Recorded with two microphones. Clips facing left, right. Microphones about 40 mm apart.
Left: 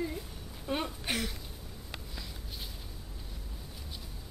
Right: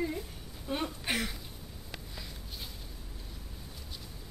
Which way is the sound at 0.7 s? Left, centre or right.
Centre.